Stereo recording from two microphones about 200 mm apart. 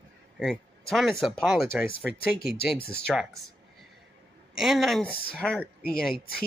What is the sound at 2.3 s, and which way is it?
Speech, 50° left (ahead or behind).